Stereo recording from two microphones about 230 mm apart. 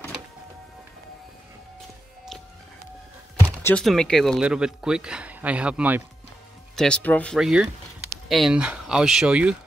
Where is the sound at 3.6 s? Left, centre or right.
Centre.